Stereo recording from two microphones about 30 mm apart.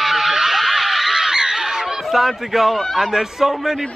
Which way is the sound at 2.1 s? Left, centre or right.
Centre.